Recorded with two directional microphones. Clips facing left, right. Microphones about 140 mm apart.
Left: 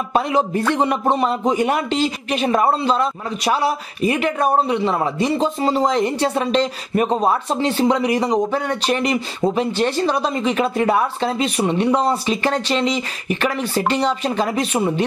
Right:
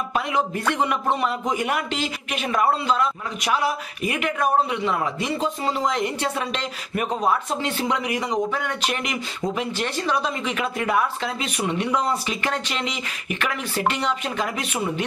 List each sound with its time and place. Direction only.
0.1 s a man's voice: 35° left (ahead or behind)